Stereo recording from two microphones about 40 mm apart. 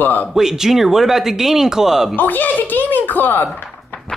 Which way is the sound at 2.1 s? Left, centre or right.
Left.